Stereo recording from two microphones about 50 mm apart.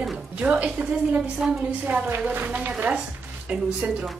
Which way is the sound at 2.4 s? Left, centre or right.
Right.